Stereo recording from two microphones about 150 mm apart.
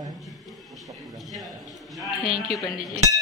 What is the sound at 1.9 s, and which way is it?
Speech, centre (ahead or behind).